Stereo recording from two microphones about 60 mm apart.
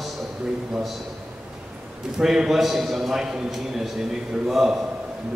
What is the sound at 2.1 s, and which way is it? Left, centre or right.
A man's voice, centre.